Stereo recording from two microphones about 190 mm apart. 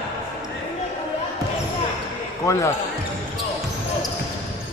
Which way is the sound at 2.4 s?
15° left (ahead or behind).